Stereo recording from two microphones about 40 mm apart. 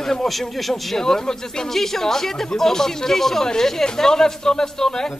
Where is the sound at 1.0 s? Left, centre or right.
Centre.